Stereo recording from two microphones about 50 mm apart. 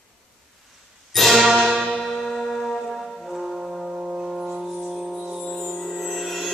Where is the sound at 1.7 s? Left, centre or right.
Centre.